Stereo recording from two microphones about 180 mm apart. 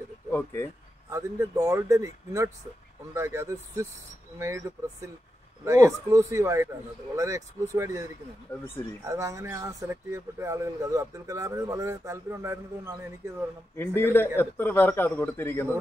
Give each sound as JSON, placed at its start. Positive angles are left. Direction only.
{"t": 0.3, "sound": "a man's voice", "side_deg": 10}
{"t": 1.1, "sound": "speech", "side_deg": -15}
{"t": 13.7, "sound": "a man's voice", "side_deg": 10}